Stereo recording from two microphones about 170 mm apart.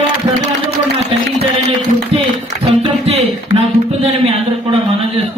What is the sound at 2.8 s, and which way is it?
Music, 35° right (ahead or behind).